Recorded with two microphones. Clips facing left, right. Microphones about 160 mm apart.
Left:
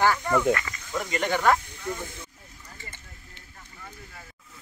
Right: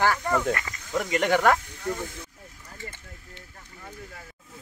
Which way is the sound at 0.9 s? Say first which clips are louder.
Right 4 dB; 70° right (ahead or behind).